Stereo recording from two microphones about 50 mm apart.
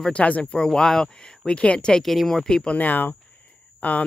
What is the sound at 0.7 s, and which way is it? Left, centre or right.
Speech, centre.